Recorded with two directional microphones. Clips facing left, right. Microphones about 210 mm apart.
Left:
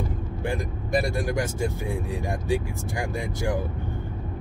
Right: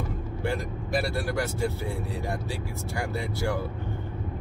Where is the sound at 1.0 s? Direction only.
15° left (ahead or behind).